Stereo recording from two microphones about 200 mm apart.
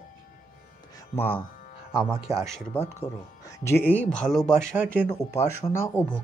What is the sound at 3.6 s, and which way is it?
Speech, 10° left (ahead or behind).